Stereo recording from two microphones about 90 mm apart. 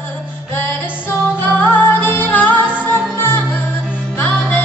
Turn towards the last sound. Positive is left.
turn(degrees=20)  # may be behind; listen again after turning